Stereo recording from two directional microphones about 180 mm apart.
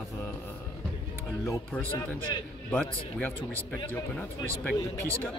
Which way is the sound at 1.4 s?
15° left (ahead or behind).